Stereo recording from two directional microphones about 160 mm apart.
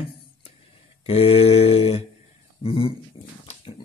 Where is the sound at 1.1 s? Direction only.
35° left (ahead or behind).